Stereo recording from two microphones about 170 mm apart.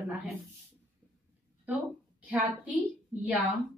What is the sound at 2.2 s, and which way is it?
Speech, 10° right (ahead or behind).